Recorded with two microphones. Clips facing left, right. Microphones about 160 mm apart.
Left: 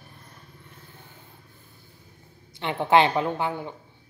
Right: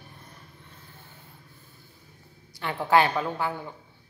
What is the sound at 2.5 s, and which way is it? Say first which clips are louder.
Speech: left 2 dB; 20° left (ahead or behind).